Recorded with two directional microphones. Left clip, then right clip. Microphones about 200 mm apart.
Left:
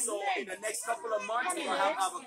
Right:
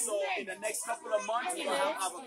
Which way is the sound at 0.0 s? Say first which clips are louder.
Even; 5° left (ahead or behind).